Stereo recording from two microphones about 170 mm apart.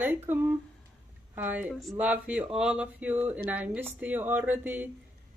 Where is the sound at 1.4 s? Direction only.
10° right (ahead or behind).